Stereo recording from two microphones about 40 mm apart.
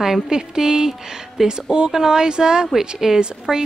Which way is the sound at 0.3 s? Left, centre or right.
Centre.